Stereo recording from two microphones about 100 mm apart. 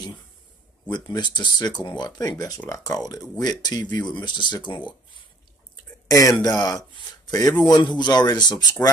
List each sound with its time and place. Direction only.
0.8 s speech: 45° left (ahead or behind)
6.0 s speech: 35° left (ahead or behind)